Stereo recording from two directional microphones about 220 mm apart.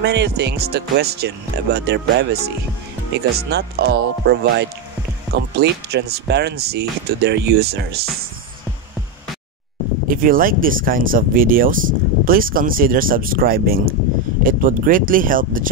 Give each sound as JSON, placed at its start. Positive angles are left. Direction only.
{"t": 0.0, "sound": "speech", "side_deg": -50}
{"t": 10.0, "sound": "speech", "side_deg": -40}